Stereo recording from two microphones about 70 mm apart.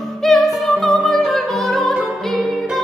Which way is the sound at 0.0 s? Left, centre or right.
Centre.